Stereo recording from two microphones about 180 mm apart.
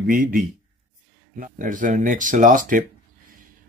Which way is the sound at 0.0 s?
50° right (ahead or behind).